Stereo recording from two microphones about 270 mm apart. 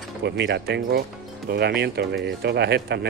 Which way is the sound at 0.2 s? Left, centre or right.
Right.